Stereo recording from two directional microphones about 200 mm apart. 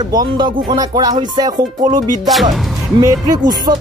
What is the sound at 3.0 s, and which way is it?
Music, 20° right (ahead or behind).